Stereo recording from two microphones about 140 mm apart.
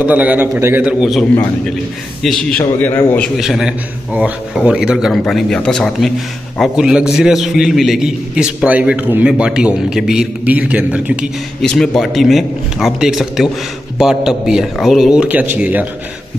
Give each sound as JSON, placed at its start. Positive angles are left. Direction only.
{"t": 0.0, "sound": "a man's voice", "side_deg": -10}
{"t": 0.8, "sound": "a man's voice", "side_deg": 0}
{"t": 2.2, "sound": "a man's voice", "side_deg": 0}
{"t": 2.8, "sound": "a man's voice", "side_deg": 15}
{"t": 3.3, "sound": "a man's voice", "side_deg": -5}
{"t": 11.6, "sound": "a man's voice", "side_deg": 5}